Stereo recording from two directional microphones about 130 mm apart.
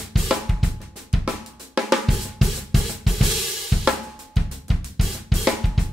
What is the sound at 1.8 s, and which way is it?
Drum kit, centre (ahead or behind).